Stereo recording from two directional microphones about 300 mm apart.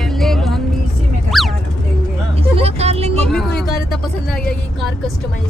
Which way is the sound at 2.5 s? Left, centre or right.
Centre.